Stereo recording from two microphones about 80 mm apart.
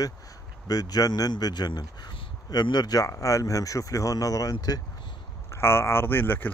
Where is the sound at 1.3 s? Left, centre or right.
Left.